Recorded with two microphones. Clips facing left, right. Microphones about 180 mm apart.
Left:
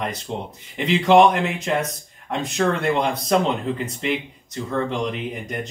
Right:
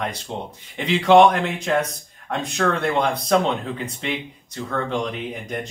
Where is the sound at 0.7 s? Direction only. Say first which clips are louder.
Right 1 dB; centre (ahead or behind).